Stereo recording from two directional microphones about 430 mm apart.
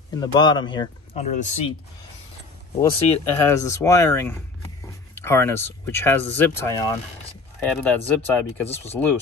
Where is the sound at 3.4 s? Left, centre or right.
Centre.